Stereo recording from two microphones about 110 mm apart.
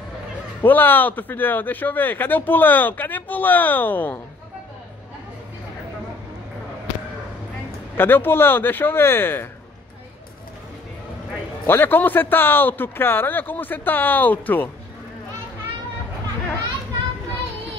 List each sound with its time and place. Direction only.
0.6 s speech: 20° left (ahead or behind)
8.0 s speech: 20° left (ahead or behind)
11.6 s speech: 20° left (ahead or behind)